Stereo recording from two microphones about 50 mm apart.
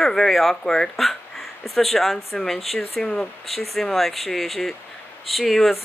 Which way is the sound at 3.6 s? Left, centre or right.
Centre.